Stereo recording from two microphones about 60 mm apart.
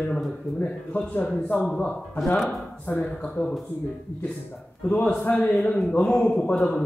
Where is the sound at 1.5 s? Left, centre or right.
Centre.